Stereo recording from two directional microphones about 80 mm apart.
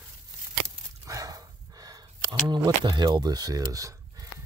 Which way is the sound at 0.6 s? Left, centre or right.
Right.